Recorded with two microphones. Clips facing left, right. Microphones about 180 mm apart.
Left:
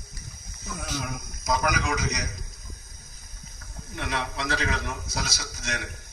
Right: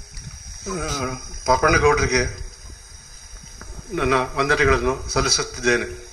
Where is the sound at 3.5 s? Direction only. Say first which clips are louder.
Right 12 dB; 65° right (ahead or behind).